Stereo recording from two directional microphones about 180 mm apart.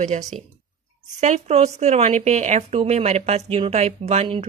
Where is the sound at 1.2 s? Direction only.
40° right (ahead or behind).